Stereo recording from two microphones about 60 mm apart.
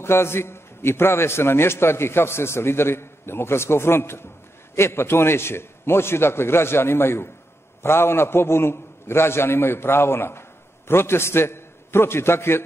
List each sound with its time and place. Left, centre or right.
0.0 s a man's voice: left